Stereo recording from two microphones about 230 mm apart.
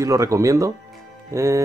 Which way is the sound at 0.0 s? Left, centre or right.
Centre.